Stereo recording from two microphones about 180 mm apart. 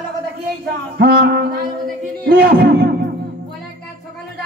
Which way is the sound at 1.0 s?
60° right (ahead or behind).